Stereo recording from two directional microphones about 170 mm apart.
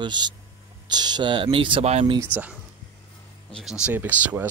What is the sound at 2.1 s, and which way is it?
Speech, 10° right (ahead or behind).